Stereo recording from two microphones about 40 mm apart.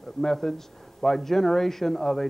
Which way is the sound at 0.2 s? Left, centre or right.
Centre.